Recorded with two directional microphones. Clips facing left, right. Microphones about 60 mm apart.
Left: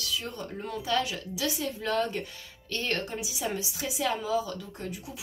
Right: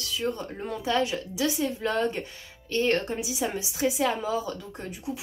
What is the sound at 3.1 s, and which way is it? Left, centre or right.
Speech, right.